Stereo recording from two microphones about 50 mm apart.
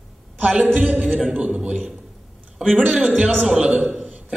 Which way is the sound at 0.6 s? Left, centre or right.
Right.